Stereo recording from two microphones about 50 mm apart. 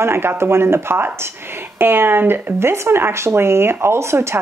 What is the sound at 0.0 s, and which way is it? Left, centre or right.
Speech, right.